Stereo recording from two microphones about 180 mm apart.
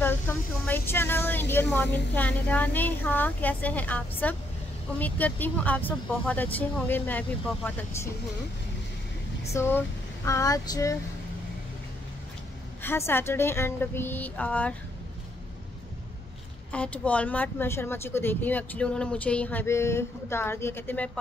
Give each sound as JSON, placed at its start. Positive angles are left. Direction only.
{"t": 0.0, "sound": "speech", "side_deg": 10}
{"t": 9.5, "sound": "speech", "side_deg": 15}
{"t": 12.8, "sound": "speech", "side_deg": 15}
{"t": 16.7, "sound": "speech", "side_deg": 5}